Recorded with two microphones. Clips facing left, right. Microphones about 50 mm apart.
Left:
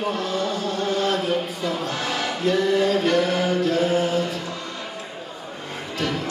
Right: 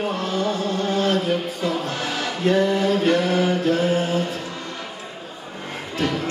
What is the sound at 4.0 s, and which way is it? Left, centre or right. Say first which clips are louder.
Mantra: even; right.